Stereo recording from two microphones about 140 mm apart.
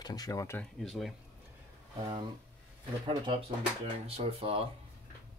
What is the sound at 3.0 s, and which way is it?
Speech, 30° right (ahead or behind).